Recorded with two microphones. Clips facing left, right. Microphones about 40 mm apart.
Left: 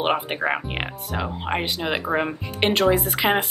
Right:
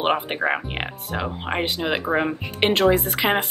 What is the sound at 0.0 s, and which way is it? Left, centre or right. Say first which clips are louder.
A woman's voice: right 1 dB; centre.